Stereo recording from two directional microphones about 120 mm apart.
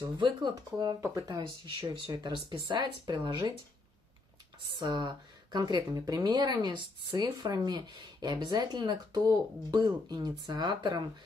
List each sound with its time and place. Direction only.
0.2 s speech: 40° right (ahead or behind)
2.5 s speech: 40° right (ahead or behind)
4.6 s speech: 35° right (ahead or behind)